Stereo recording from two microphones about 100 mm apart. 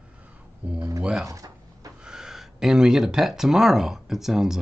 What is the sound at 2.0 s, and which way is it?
Speech, 5° right (ahead or behind).